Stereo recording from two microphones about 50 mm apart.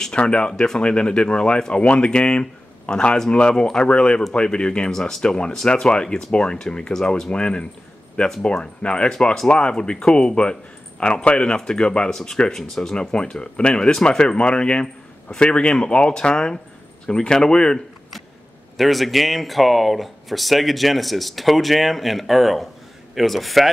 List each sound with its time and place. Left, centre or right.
0.1 s speech: left
18.8 s speech: centre